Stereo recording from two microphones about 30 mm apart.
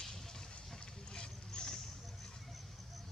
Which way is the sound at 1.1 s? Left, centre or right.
Left.